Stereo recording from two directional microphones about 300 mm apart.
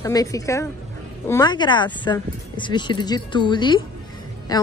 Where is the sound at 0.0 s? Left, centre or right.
Centre.